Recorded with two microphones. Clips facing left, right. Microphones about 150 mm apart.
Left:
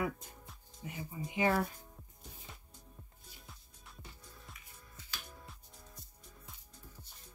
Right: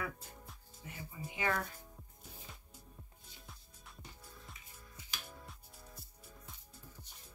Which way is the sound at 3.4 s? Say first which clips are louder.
Right 2 dB; centre (ahead or behind).